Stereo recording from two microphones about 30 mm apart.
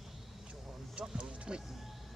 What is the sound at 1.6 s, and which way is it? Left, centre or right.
Vehicle, centre.